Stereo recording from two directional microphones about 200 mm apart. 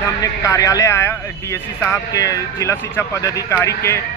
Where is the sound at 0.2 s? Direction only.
15° left (ahead or behind).